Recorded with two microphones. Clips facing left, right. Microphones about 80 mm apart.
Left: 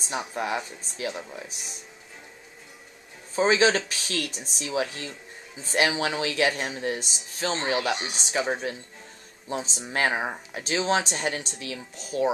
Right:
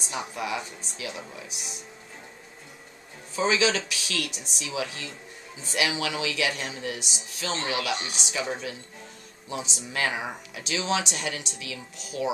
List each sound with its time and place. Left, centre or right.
0.3 s speech: left
3.3 s speech: left